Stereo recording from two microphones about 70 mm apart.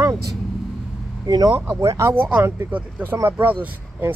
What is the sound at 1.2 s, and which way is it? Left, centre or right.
Speech, right.